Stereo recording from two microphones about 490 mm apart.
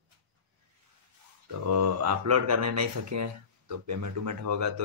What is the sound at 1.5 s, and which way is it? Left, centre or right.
Speech, right.